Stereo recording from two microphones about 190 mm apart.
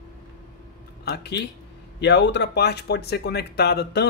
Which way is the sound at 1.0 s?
60° left (ahead or behind).